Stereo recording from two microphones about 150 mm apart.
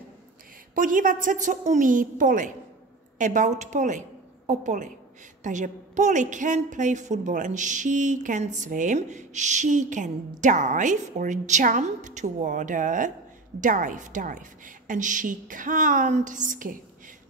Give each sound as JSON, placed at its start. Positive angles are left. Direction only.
{"t": 0.7, "sound": "a woman's voice", "side_deg": -65}